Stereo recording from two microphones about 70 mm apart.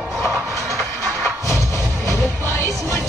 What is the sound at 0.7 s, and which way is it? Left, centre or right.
Music, right.